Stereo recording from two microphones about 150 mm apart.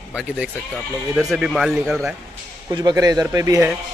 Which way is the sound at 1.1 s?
5° right (ahead or behind).